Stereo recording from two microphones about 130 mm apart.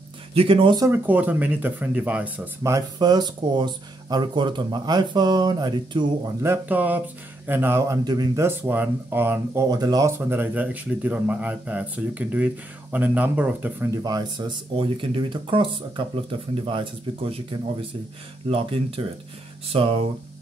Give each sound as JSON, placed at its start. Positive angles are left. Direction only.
{"t": 0.3, "sound": "speech", "side_deg": -45}
{"t": 0.7, "sound": "speech", "side_deg": -20}
{"t": 6.4, "sound": "speech", "side_deg": -15}
{"t": 8.5, "sound": "speech", "side_deg": -15}
{"t": 14.0, "sound": "speech", "side_deg": -35}